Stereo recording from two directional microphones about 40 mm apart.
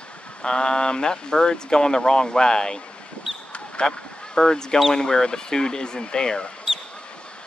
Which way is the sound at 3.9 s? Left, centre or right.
Centre.